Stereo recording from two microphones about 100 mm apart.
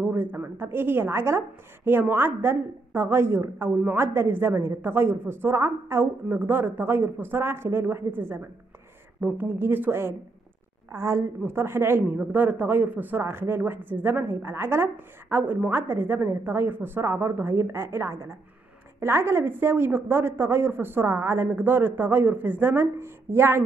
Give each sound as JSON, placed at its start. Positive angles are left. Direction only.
{"t": 0.1, "sound": "speech", "side_deg": -20}
{"t": 9.4, "sound": "speech", "side_deg": -20}